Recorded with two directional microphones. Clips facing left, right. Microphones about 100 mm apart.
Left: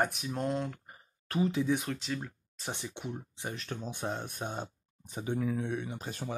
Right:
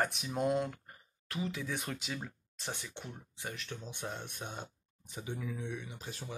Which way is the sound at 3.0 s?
15° left (ahead or behind).